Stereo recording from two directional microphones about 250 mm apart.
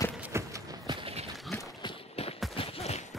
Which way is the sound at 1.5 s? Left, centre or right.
Centre.